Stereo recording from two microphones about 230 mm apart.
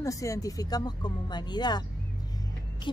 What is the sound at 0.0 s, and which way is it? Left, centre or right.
A woman's voice, centre.